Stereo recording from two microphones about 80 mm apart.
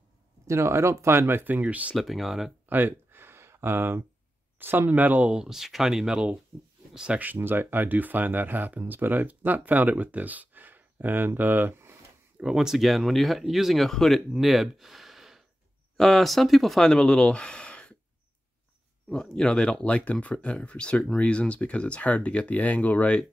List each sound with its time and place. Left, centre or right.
0.5 s speech: right; by 2.0 s centre
2.0 s speech: centre
2.7 s a sound: right
4.6 s speech: right; by 6.3 s centre
6.9 s a sound: centre
7.2 s speech: right
12.4 s speech: centre
19.3 s speech: centre